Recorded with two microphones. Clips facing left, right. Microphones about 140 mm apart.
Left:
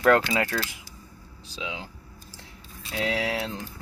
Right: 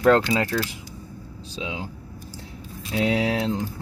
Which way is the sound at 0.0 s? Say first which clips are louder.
Right 3 dB; 25° right (ahead or behind).